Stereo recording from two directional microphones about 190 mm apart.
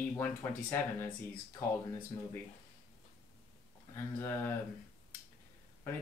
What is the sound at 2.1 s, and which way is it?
Speech, 15° left (ahead or behind).